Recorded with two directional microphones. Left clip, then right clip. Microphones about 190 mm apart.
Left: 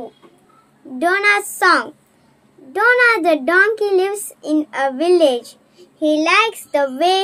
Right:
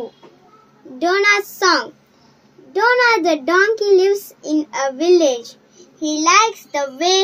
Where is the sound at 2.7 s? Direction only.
35° left (ahead or behind).